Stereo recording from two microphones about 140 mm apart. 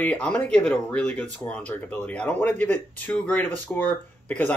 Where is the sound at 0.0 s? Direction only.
10° left (ahead or behind).